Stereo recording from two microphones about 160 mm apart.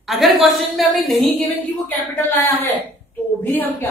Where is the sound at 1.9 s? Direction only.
15° left (ahead or behind).